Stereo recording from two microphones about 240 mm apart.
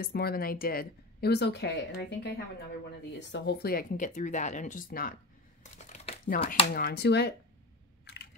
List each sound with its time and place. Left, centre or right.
0.0 s speech: left
5.6 s crumpling: left
6.7 s speech: left
8.0 s a sound: left